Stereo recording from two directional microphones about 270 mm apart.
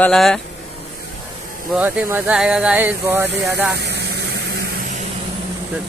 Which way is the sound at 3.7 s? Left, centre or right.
Right.